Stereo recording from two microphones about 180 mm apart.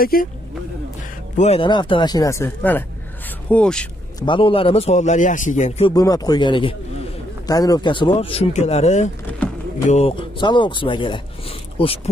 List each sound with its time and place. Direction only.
0.0 s speech: 55° left (ahead or behind)
1.3 s speech: 35° left (ahead or behind); by 3.8 s 5° left (ahead or behind)
4.2 s a man's voice: 25° left (ahead or behind); by 5.9 s 45° left (ahead or behind)
5.9 s a man's voice: 20° left (ahead or behind)